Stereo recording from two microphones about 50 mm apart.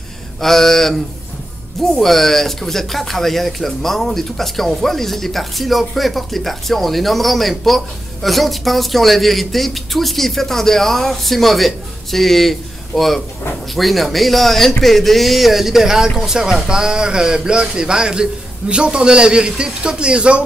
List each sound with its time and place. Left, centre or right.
0.4 s a man's voice: centre; by 20.4 s right